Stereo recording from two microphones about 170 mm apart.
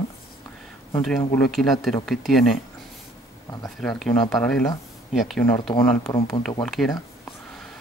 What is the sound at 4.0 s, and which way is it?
Speech, centre (ahead or behind).